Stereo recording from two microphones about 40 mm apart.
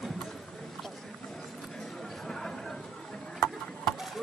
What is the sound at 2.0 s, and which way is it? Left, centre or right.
Chatter, centre.